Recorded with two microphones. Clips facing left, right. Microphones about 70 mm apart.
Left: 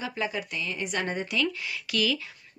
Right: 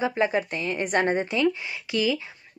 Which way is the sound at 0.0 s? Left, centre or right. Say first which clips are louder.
Right 8 dB; right.